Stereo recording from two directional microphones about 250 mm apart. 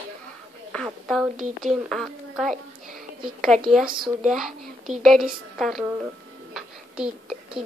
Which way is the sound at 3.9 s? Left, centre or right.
Centre.